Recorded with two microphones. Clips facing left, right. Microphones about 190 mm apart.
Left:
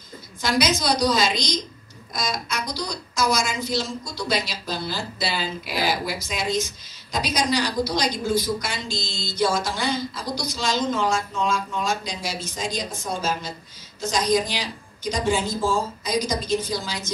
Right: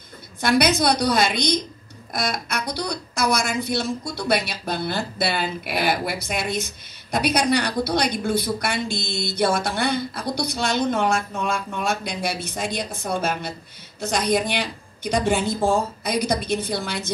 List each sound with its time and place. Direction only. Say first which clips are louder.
0.4 s a woman's voice: right 4 dB; 60° right (ahead or behind)